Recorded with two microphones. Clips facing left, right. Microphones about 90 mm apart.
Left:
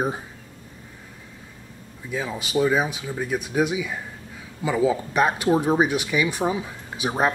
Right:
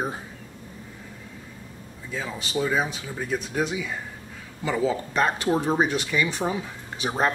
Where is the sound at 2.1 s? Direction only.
15° left (ahead or behind).